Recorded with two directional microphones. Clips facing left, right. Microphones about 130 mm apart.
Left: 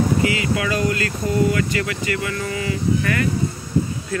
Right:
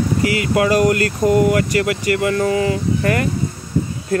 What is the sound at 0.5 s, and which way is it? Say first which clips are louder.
Speech: right 7 dB; 50° right (ahead or behind).